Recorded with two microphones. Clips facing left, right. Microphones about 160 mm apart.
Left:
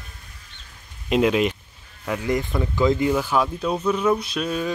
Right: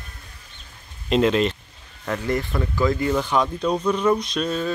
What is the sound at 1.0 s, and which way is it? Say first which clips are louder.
Speech: even; 10° left (ahead or behind).